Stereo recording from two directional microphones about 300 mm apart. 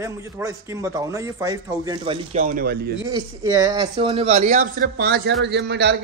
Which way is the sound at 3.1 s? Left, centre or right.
Centre.